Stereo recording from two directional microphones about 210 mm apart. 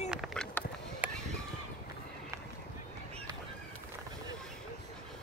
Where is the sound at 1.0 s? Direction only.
5° right (ahead or behind).